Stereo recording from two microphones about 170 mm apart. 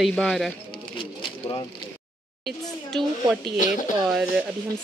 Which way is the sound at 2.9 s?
Centre (ahead or behind).